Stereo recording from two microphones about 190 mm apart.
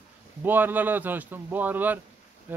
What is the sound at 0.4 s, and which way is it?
A man's voice, 10° right (ahead or behind).